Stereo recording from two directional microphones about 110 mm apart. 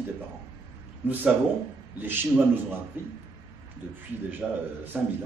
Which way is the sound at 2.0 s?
20° right (ahead or behind).